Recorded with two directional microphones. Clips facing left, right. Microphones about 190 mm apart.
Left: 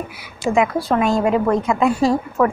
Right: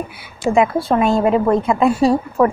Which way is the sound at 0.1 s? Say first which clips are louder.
Right 2 dB; 25° right (ahead or behind).